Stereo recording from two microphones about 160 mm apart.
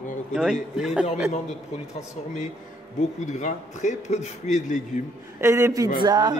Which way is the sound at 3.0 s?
50° left (ahead or behind).